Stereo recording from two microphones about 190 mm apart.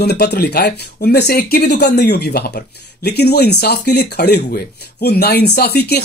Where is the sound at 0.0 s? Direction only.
60° left (ahead or behind).